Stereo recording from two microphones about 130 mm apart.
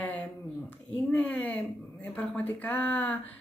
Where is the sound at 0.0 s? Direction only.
10° left (ahead or behind).